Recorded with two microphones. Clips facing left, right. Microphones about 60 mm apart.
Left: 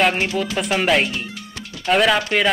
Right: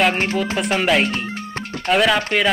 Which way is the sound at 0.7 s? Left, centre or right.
Centre.